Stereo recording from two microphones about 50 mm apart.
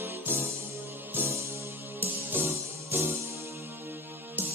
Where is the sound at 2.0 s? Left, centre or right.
Right.